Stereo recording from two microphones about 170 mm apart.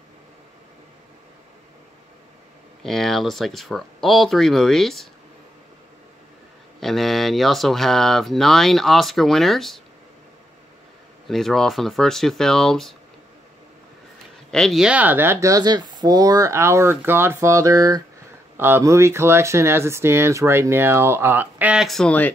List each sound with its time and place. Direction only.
2.8 s speech: centre (ahead or behind)
6.8 s speech: centre (ahead or behind)
11.2 s speech: centre (ahead or behind)
14.5 s speech: centre (ahead or behind)